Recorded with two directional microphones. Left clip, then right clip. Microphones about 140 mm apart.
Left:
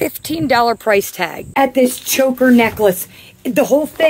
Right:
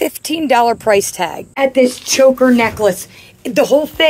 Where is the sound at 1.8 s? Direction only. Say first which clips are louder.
Right 4 dB; 25° left (ahead or behind).